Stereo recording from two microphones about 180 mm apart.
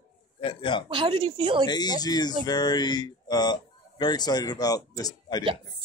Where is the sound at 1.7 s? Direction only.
20° left (ahead or behind).